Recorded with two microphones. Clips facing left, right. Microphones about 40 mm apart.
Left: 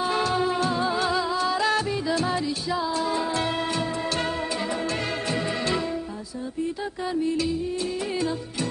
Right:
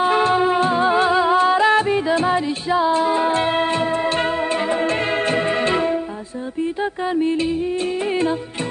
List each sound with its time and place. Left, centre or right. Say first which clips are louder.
0.0 s music: right 7 dB; right